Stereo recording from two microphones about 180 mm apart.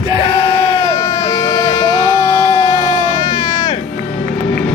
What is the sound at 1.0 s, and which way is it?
Vehicle, 20° left (ahead or behind).